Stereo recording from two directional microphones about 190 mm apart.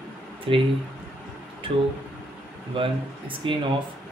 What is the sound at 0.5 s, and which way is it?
Speech, 30° right (ahead or behind).